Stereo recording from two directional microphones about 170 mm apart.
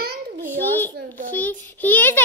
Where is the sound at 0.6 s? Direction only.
10° left (ahead or behind).